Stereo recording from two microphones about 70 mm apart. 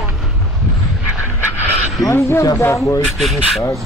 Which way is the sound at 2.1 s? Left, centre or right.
Left.